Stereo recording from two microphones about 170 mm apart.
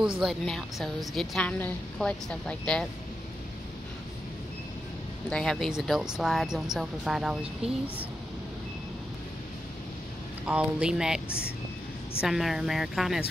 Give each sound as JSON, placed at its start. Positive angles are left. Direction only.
{"t": 0.2, "sound": "a woman's voice", "side_deg": 0}
{"t": 5.3, "sound": "a woman's voice", "side_deg": 0}
{"t": 7.6, "sound": "speech", "side_deg": -35}
{"t": 10.4, "sound": "a woman's voice", "side_deg": -5}